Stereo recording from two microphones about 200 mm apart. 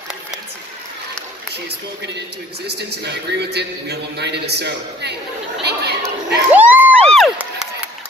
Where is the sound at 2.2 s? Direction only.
55° right (ahead or behind).